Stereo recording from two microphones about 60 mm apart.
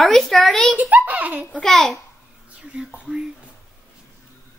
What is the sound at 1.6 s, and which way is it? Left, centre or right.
Speech, centre.